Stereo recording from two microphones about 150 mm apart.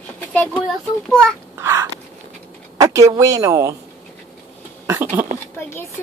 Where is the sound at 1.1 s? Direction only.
5° left (ahead or behind).